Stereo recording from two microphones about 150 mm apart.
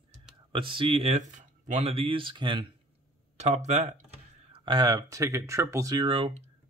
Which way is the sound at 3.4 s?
50° right (ahead or behind).